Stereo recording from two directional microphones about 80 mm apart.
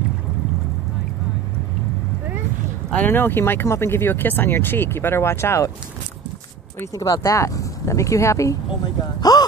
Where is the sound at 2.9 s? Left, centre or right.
Left.